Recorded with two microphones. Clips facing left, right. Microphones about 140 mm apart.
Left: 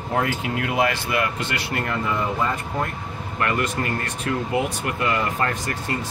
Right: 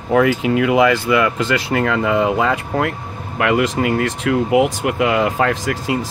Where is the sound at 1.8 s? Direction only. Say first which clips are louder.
Right 8 dB; 90° right.